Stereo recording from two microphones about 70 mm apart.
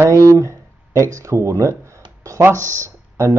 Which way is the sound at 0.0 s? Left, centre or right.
Right.